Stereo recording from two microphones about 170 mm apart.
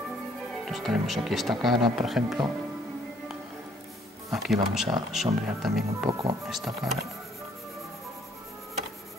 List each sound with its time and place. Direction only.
0.7 s speech: centre (ahead or behind)
4.3 s speech: centre (ahead or behind)
6.0 s speech: 20° right (ahead or behind)
6.4 s speech: centre (ahead or behind)